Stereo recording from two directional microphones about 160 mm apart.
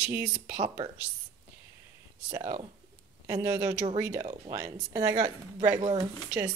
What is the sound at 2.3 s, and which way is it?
Speech, 35° right (ahead or behind).